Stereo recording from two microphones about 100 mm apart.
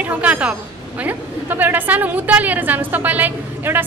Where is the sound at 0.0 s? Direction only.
15° right (ahead or behind).